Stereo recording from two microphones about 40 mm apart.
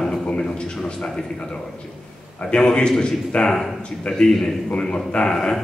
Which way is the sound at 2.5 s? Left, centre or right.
Left.